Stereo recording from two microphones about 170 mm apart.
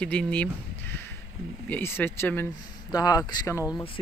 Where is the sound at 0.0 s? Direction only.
5° left (ahead or behind).